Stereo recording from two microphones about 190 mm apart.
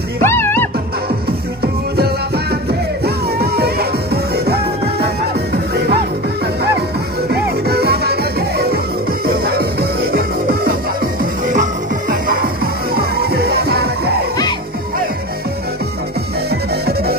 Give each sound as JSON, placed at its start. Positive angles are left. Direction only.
{"t": 0.2, "sound": "music", "side_deg": 10}
{"t": 3.0, "sound": "music", "side_deg": -55}
{"t": 7.2, "sound": "music", "side_deg": -55}
{"t": 11.4, "sound": "music", "side_deg": -45}
{"t": 16.4, "sound": "music", "side_deg": -55}